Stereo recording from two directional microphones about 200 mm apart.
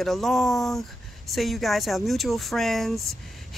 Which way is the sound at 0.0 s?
Centre (ahead or behind).